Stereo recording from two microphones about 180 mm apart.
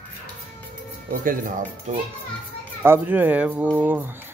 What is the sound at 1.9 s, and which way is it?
Speech, 40° right (ahead or behind).